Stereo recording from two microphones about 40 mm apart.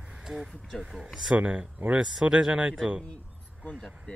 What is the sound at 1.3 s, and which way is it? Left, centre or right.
Speech, right.